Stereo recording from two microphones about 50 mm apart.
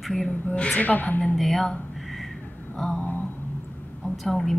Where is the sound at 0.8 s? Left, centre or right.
Left.